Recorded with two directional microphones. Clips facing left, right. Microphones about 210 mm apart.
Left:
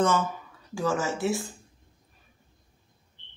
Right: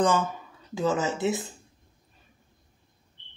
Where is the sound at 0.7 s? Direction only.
20° right (ahead or behind).